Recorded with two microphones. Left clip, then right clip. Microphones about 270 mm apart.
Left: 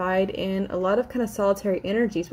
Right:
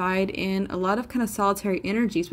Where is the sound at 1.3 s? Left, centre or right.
Right.